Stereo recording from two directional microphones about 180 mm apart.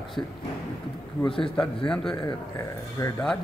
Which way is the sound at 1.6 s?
5° left (ahead or behind).